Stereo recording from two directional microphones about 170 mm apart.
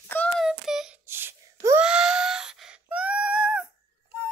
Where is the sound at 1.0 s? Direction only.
15° right (ahead or behind).